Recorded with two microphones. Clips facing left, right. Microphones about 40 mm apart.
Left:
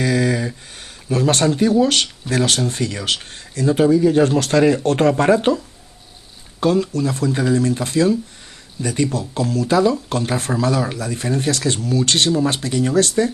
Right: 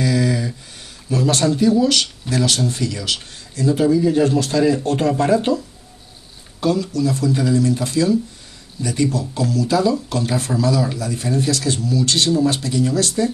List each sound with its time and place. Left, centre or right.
0.0 s a sound: left
1.1 s a man's voice: left
6.6 s speech: left